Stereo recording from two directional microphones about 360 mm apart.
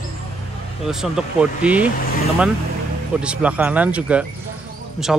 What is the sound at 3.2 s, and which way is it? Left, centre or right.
Speech, centre.